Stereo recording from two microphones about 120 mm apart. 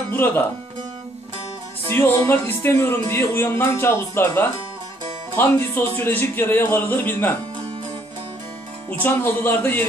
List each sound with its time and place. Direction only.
0.1 s speech: 20° left (ahead or behind)
1.9 s speech: 20° left (ahead or behind)
9.0 s speech: 15° left (ahead or behind)